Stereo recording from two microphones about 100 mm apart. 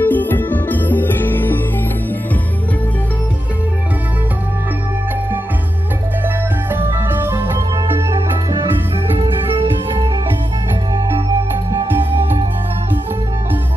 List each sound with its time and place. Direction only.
0.0 s music: 20° left (ahead or behind)
6.2 s music: 20° right (ahead or behind)
9.6 s music: 55° right (ahead or behind)